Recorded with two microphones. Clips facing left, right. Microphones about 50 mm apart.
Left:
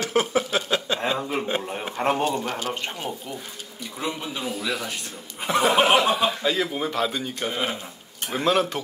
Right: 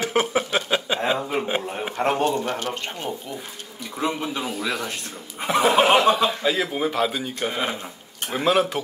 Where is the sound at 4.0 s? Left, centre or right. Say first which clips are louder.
Right 4 dB; right.